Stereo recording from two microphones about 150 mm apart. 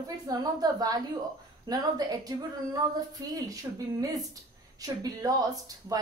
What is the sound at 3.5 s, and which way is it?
A woman's voice, 25° right (ahead or behind).